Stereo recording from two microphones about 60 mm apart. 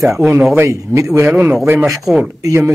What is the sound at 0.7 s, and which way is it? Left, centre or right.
Speech, right.